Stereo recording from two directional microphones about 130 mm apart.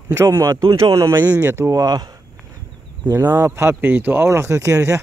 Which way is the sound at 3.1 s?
15° right (ahead or behind).